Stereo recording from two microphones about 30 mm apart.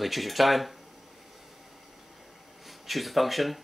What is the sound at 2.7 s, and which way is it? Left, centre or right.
Speech, centre.